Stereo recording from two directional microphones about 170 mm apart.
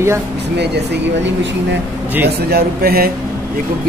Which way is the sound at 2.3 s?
70° right (ahead or behind).